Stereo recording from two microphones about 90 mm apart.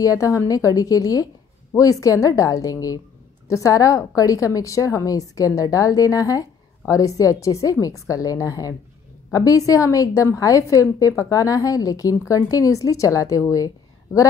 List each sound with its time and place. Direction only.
0.0 s a woman's voice: 40° left (ahead or behind)